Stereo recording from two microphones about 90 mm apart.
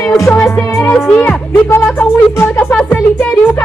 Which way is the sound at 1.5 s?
25° left (ahead or behind).